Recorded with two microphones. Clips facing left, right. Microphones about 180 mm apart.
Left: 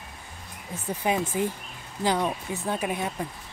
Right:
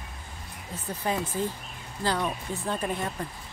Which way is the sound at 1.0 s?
15° left (ahead or behind).